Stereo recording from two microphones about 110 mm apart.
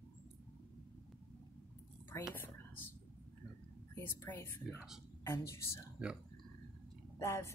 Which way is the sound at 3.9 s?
25° left (ahead or behind).